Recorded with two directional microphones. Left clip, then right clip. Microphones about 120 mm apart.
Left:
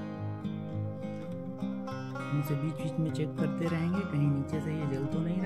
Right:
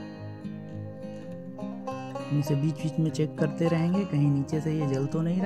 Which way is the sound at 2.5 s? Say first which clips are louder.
Right 5 dB; 35° right (ahead or behind).